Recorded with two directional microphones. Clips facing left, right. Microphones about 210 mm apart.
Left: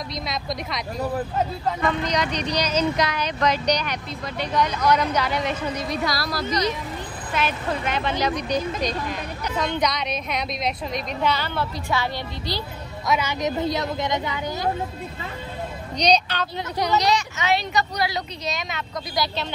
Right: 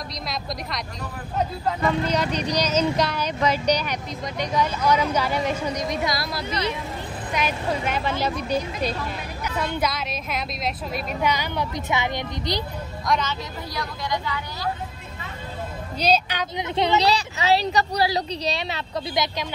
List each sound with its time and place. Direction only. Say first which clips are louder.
0.3 s a woman's voice: even; centre (ahead or behind)
2.6 s speech: even; 10° left (ahead or behind)
3.2 s a woman's voice: even; 10° right (ahead or behind)
7.3 s a woman's voice: even; 10° right (ahead or behind)
13.0 s speech: left 2 dB; 5° left (ahead or behind)
16.0 s a woman's voice: left 1 dB; 10° right (ahead or behind)
16.7 s a woman's voice: right 1 dB; 30° right (ahead or behind)
19.2 s speech: even; 20° right (ahead or behind)